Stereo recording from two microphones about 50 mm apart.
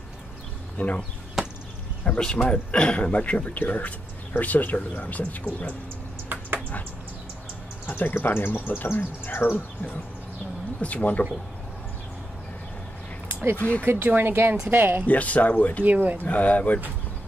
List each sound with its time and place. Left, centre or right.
0.7 s speech: left
2.0 s speech: centre
7.8 s speech: left
10.8 s speech: left
13.6 s speech: left
13.8 s speech: right
15.0 s speech: left
15.8 s speech: right
16.2 s speech: left